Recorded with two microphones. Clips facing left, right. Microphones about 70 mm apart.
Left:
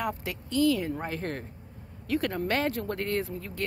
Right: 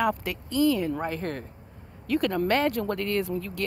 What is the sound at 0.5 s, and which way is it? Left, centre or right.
Speech, right.